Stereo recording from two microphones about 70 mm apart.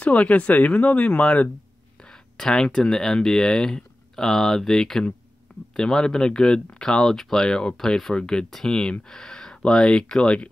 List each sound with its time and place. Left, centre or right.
0.0 s speech: centre